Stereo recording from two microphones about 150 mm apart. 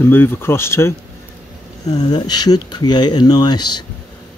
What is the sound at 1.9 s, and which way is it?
Speech, 25° left (ahead or behind).